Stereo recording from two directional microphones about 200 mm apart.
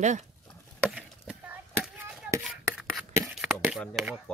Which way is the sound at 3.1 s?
5° right (ahead or behind).